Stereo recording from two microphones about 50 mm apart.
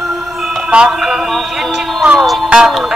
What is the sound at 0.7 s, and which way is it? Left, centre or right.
Music, centre.